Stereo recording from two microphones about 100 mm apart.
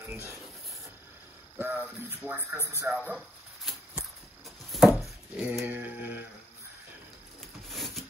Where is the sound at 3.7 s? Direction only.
Centre (ahead or behind).